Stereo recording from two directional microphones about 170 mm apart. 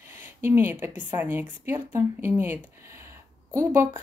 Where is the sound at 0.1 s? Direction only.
15° right (ahead or behind).